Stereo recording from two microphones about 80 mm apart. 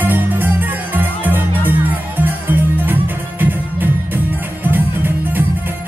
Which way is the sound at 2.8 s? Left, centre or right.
Right.